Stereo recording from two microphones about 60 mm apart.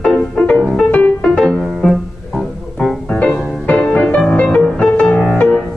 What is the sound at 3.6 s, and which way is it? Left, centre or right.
Music, left.